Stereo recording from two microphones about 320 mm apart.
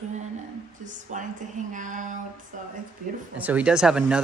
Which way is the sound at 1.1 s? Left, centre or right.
Right.